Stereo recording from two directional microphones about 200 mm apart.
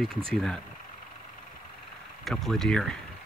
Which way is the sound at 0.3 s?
5° left (ahead or behind).